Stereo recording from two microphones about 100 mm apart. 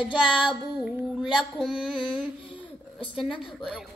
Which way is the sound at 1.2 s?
Centre (ahead or behind).